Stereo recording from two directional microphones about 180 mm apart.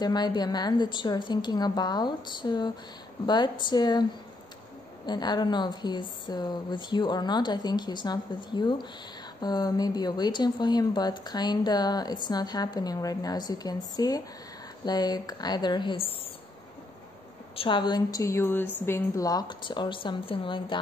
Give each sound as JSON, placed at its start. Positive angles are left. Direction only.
{"t": 0.0, "sound": "speech", "side_deg": 25}
{"t": 5.0, "sound": "speech", "side_deg": 25}
{"t": 17.6, "sound": "speech", "side_deg": 25}